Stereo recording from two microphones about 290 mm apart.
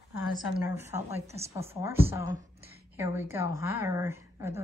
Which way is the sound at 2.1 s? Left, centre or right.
Centre.